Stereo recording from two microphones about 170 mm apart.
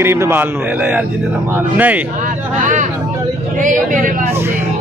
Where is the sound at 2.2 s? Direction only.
50° right (ahead or behind).